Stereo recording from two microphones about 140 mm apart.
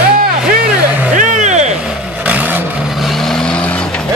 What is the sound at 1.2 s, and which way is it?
Vehicle, 60° right (ahead or behind).